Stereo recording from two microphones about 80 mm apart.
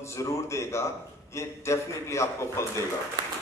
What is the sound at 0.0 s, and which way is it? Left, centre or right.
A man's voice, left.